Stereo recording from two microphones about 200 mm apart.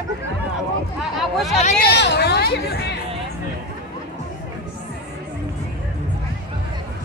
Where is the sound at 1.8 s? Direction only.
55° left (ahead or behind).